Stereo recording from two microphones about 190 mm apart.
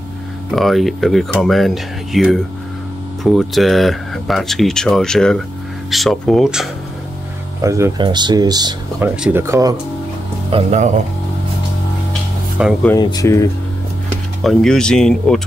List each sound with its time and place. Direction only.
0.5 s speech: centre (ahead or behind)
7.6 s speech: 15° right (ahead or behind)
9.0 s speech: 5° right (ahead or behind)
10.5 s speech: 35° right (ahead or behind)
12.1 s music: 5° right (ahead or behind)
13.0 s speech: 20° left (ahead or behind)
14.4 s speech: centre (ahead or behind)